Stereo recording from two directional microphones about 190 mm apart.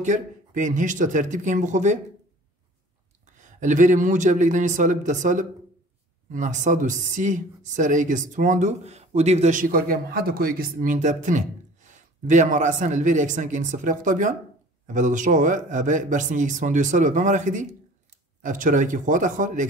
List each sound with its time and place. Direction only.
0.0 s speech: 40° right (ahead or behind)
3.3 s speech: 40° right (ahead or behind)